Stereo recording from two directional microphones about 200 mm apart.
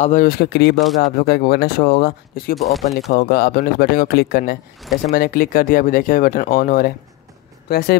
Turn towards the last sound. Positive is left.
turn(degrees=50)  # may be behind; listen again after turning